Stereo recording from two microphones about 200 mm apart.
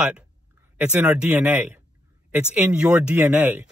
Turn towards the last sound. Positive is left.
turn(degrees=-10)  # may be behind; listen again after turning